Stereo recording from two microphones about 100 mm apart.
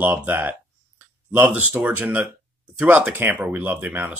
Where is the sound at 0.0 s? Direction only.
20° right (ahead or behind).